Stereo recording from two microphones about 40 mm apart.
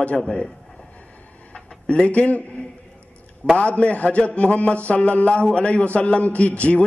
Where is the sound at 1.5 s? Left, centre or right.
Left.